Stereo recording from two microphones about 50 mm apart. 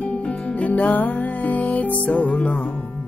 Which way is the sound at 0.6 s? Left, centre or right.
Left.